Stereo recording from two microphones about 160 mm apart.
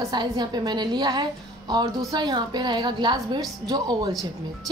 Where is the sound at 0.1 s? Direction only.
25° right (ahead or behind).